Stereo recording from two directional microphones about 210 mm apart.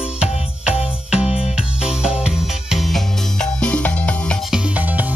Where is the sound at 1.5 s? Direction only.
5° right (ahead or behind).